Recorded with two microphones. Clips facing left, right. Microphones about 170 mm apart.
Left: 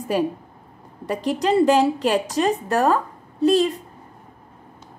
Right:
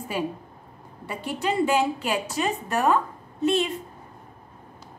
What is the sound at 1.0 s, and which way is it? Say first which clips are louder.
A woman's voice: left 6 dB; 40° left (ahead or behind).